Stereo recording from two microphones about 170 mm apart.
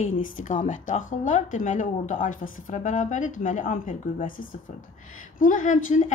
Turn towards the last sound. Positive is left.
turn(degrees=45)  # may be behind; listen again after turning